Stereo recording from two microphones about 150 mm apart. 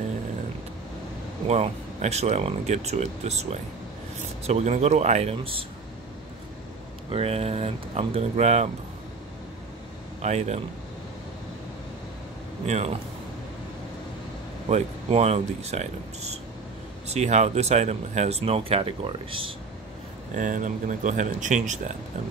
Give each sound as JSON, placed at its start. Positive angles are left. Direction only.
{"t": 1.5, "sound": "speech", "side_deg": -45}
{"t": 7.1, "sound": "speech", "side_deg": -40}
{"t": 10.2, "sound": "speech", "side_deg": -50}
{"t": 12.6, "sound": "speech", "side_deg": -45}
{"t": 14.7, "sound": "speech", "side_deg": -50}
{"t": 20.3, "sound": "speech", "side_deg": -60}